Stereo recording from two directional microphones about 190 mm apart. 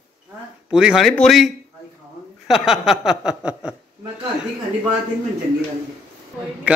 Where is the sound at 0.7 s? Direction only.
5° right (ahead or behind).